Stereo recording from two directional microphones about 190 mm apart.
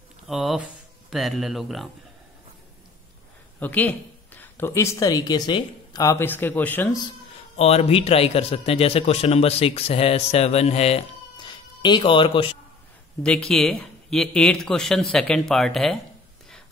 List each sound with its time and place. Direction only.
0.3 s speech: centre (ahead or behind)
3.5 s speech: 10° left (ahead or behind)
7.5 s a man's voice: 30° left (ahead or behind)
13.2 s speech: 5° left (ahead or behind)